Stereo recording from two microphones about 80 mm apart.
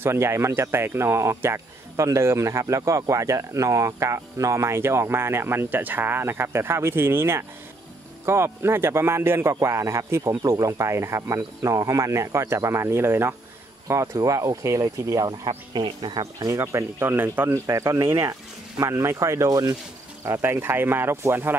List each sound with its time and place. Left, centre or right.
0.0 s a man's voice: right
16.5 s a man's voice: right
17.6 s a man's voice: right
20.2 s a man's voice: right
20.5 s speech: right